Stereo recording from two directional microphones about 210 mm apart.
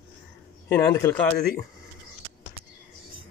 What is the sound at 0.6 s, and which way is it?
Speech, 10° left (ahead or behind).